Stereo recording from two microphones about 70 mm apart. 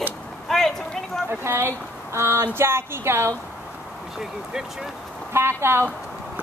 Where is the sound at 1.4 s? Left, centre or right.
Right.